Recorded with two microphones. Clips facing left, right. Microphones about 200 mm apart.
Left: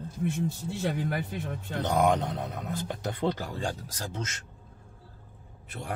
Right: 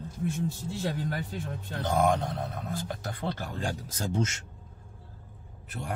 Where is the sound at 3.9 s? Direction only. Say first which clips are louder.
Right 6 dB; 30° right (ahead or behind).